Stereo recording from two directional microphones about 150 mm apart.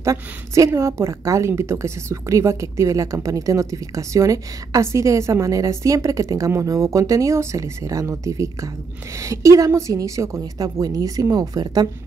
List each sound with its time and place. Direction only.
0.0 s a woman's voice: 20° right (ahead or behind)